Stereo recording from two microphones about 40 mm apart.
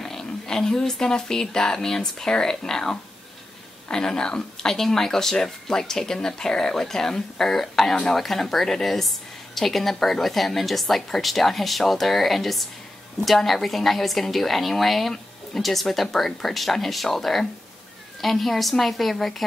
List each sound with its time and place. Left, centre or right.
0.0 s speech: centre
8.2 s a woman's voice: centre